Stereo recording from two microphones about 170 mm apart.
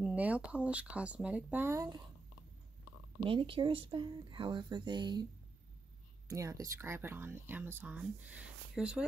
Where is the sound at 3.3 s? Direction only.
30° right (ahead or behind).